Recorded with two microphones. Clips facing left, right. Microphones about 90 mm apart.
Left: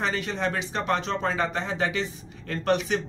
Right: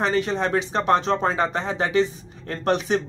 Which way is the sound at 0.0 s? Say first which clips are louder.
Right 5 dB; 35° right (ahead or behind).